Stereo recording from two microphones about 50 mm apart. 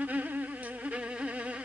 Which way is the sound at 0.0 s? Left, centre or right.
Right.